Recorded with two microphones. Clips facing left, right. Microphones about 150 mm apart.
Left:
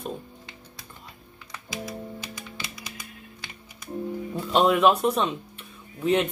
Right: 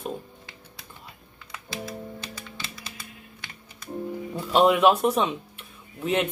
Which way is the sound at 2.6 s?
15° left (ahead or behind).